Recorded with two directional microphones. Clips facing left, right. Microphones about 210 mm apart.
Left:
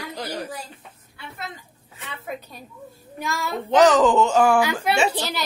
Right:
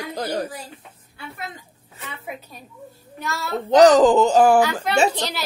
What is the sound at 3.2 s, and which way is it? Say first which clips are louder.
Speech: right 1 dB; 10° left (ahead or behind).